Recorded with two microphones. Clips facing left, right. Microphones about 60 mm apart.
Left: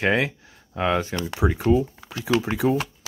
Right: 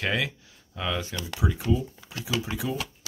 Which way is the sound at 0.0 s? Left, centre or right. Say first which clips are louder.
Left 6 dB; left.